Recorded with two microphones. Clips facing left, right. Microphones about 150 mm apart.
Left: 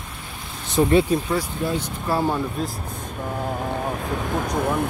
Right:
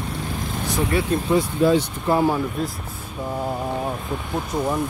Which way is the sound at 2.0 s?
15° right (ahead or behind).